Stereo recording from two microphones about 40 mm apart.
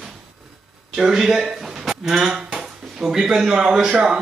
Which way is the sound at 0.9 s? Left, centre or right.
Centre.